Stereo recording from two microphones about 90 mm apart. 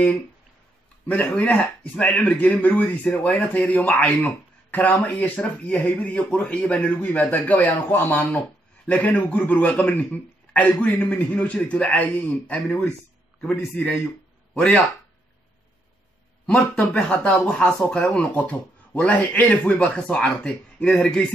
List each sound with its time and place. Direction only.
1.0 s speech: 15° left (ahead or behind)
16.4 s speech: 15° left (ahead or behind)